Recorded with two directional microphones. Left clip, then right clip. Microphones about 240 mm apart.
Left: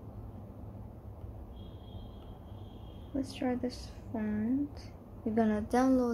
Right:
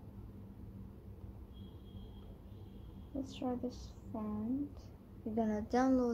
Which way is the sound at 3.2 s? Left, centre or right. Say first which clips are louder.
Left 5 dB; centre.